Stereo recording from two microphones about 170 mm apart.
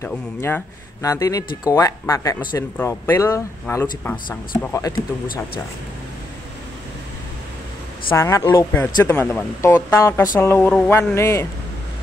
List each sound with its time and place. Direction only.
0.0 s speech: 15° left (ahead or behind)
8.2 s speech: 15° left (ahead or behind)